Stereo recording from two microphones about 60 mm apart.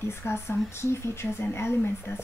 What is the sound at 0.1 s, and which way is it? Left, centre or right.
Speech, left.